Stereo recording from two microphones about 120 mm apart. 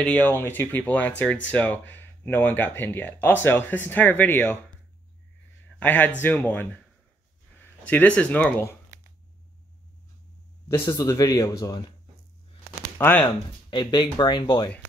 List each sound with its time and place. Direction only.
0.0 s speech: 10° left (ahead or behind)
5.8 s speech: 15° left (ahead or behind)
7.8 s speech: 10° left (ahead or behind)
10.7 s a man's voice: 25° left (ahead or behind)
12.9 s speech: 15° left (ahead or behind)
13.2 s speech: 40° left (ahead or behind)